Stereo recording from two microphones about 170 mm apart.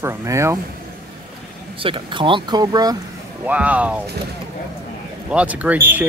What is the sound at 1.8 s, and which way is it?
Speech, 30° right (ahead or behind).